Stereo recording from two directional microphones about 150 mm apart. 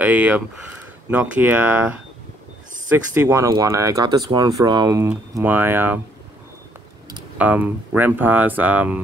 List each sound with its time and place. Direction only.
0.0 s speech: 10° right (ahead or behind)
7.3 s speech: 10° right (ahead or behind)